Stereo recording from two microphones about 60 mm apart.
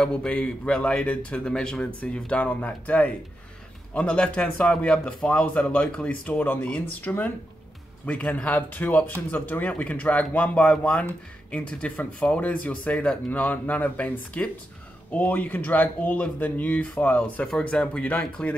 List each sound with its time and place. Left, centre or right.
0.0 s speech: centre
17.5 s speech: centre